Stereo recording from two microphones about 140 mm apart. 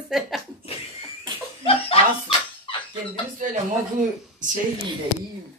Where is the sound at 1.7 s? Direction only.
45° left (ahead or behind).